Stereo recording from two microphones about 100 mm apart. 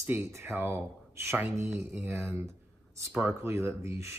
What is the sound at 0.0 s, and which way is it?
Speech, 25° right (ahead or behind).